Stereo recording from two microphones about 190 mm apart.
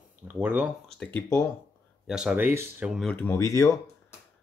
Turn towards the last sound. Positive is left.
turn(degrees=15)  # may be behind; listen again after turning